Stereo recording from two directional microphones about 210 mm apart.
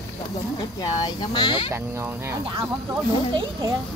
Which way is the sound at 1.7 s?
10° right (ahead or behind).